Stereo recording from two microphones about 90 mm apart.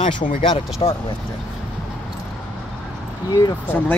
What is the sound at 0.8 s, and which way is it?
Speech, 90° left.